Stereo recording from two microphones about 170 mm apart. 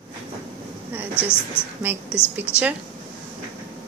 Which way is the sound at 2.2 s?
15° left (ahead or behind).